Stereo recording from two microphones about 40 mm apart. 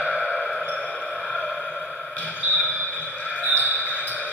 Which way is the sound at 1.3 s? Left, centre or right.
Centre.